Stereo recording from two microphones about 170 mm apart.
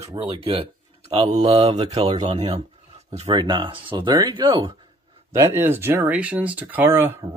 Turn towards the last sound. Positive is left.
turn(degrees=-15)  # may be behind; listen again after turning